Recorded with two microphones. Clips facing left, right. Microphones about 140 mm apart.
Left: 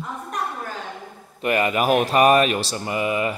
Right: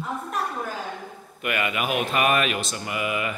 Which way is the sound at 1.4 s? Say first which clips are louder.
Left 7 dB; 35° left (ahead or behind).